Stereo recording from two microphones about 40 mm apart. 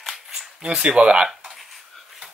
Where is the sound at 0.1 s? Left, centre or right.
Centre.